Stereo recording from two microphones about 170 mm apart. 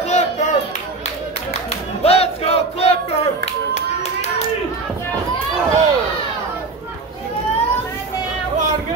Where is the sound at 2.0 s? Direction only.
35° left (ahead or behind).